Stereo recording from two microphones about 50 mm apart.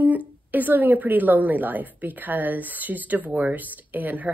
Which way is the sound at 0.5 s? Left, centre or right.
Right.